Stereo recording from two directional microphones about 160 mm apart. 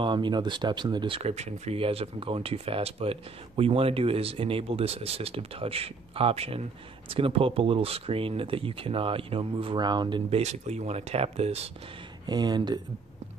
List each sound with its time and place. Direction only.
0.0 s speech: 30° right (ahead or behind)
10.4 s speech: 45° right (ahead or behind)
12.3 s speech: 25° right (ahead or behind)